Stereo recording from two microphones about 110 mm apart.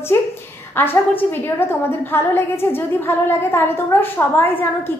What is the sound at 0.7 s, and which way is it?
A woman's voice, 20° left (ahead or behind).